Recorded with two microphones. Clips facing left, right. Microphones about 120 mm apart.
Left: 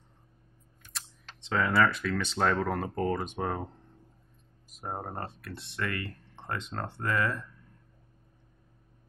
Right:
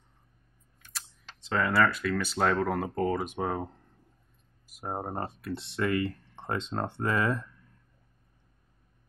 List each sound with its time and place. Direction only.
0.9 s speech: centre (ahead or behind)
4.6 s speech: 10° right (ahead or behind)